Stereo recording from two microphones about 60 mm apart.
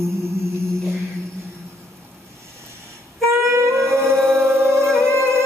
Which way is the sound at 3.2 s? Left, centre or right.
Right.